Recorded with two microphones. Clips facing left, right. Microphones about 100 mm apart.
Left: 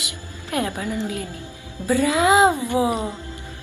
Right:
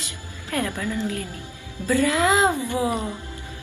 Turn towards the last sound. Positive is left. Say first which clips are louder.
# left 3 dB
turn(degrees=20)  # may be behind; listen again after turning